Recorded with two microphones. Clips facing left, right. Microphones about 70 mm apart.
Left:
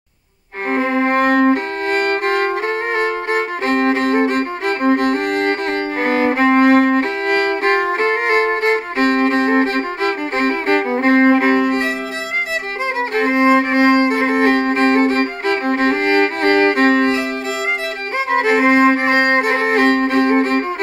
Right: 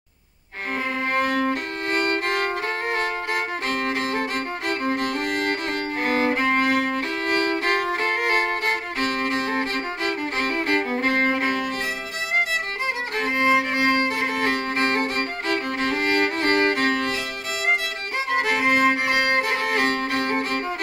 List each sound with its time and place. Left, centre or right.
0.7 s music: left
13.1 s violin: left
18.3 s music: left